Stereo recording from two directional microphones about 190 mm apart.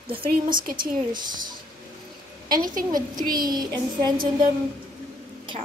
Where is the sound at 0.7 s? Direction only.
25° right (ahead or behind).